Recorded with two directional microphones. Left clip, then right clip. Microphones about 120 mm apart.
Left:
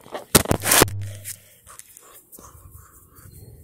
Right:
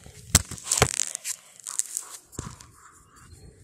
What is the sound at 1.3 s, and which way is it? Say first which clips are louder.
Tearing: right 4 dB; 45° right (ahead or behind).